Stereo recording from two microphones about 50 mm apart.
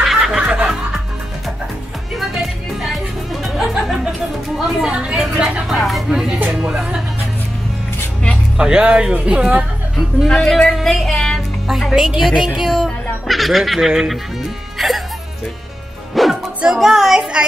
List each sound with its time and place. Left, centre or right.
0.0 s music: centre
0.4 s laughter: centre
2.1 s music: centre
4.6 s a sound: centre
5.7 s a sound: centre
6.5 s music: centre
8.5 s speech: centre
10.2 s speech: centre
10.7 s music: centre
11.6 s speech: centre
14.8 s music: centre
16.1 s music: centre